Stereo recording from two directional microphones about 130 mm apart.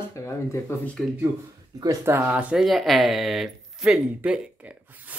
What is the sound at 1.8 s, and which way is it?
Speech, 20° right (ahead or behind).